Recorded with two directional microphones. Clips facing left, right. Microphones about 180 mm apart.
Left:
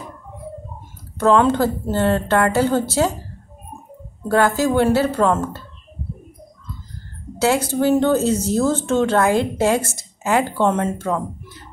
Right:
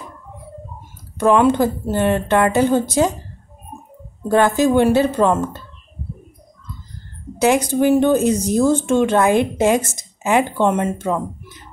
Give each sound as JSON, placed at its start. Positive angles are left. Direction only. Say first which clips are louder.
{"t": 1.2, "sound": "a woman's voice", "louder": "right 1 dB", "side_deg": -15}
{"t": 4.3, "sound": "a woman's voice", "louder": "right 2 dB", "side_deg": -20}
{"t": 7.3, "sound": "a woman's voice", "louder": "right 2 dB", "side_deg": -15}